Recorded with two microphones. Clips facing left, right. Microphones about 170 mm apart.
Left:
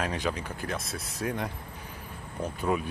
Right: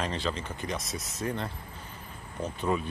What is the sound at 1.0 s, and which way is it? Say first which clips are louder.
Speech: left 1 dB; 30° left (ahead or behind).